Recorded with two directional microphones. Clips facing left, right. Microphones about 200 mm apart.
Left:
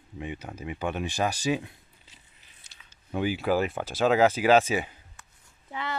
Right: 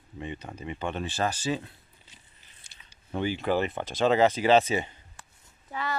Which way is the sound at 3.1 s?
5° left (ahead or behind).